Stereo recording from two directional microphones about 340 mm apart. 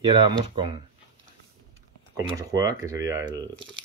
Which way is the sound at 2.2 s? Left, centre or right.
Centre.